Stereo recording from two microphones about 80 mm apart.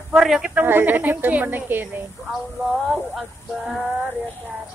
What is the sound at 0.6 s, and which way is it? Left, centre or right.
A woman's voice, right.